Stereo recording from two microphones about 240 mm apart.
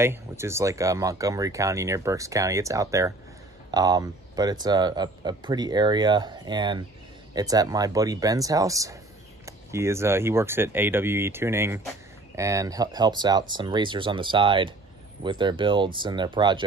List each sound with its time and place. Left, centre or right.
0.0 s speech: centre